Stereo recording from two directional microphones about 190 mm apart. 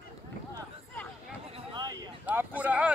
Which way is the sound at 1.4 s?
25° right (ahead or behind).